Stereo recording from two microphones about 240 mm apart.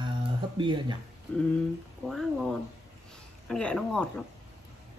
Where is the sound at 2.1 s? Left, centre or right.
Centre.